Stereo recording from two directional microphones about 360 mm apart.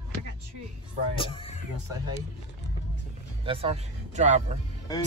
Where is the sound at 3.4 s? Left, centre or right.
Centre.